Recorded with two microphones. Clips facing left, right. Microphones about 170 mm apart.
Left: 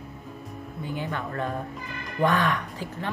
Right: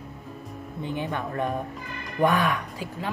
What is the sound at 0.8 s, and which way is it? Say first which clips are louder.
Speech: right 2 dB; 20° right (ahead or behind).